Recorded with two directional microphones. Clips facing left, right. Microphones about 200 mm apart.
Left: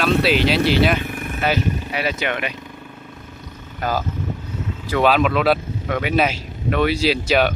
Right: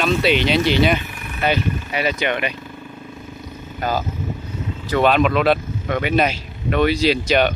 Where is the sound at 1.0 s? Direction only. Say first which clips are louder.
Left 6 dB; 50° left (ahead or behind).